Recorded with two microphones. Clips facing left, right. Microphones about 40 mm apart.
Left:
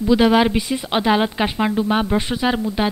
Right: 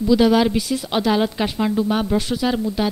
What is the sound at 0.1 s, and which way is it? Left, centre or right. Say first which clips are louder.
Speech: left 1 dB; left.